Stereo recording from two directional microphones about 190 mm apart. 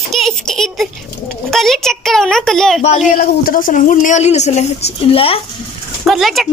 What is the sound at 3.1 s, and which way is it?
A woman's voice, 50° left (ahead or behind).